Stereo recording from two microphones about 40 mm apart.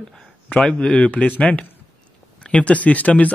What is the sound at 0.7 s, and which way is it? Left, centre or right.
Speech, left.